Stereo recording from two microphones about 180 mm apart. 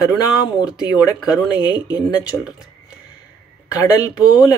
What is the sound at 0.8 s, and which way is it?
Speech, 20° left (ahead or behind).